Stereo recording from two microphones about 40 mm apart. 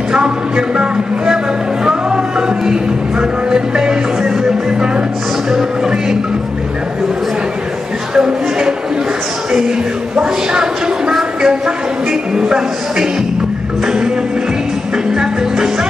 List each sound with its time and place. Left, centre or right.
0.1 s speech: centre
2.0 s music: centre
8.1 s speech: centre
10.1 s speech: centre